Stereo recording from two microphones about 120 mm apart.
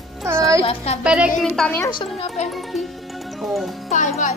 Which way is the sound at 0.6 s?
50° left (ahead or behind).